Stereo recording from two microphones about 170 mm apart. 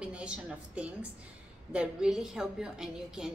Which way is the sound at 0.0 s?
5° right (ahead or behind).